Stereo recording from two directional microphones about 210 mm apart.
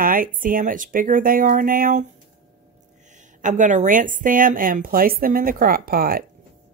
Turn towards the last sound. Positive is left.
turn(degrees=-45)  # may be behind; listen again after turning